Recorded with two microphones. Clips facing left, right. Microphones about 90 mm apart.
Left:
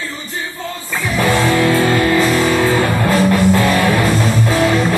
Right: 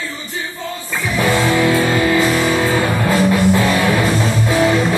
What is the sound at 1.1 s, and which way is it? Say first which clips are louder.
Music: left 1 dB; 5° right (ahead or behind).